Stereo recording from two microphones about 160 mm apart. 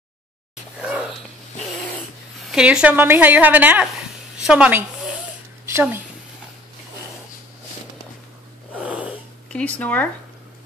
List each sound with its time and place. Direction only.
0.7 s dog: 5° right (ahead or behind)
2.5 s a woman's voice: 5° right (ahead or behind)
8.8 s cat: 10° right (ahead or behind)
9.5 s speech: 5° left (ahead or behind)